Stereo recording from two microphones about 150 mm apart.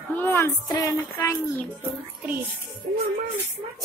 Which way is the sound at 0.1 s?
15° left (ahead or behind).